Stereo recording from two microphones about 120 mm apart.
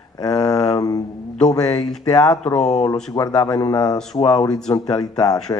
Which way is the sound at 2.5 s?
70° left (ahead or behind).